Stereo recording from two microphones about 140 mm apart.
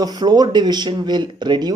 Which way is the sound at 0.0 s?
30° right (ahead or behind).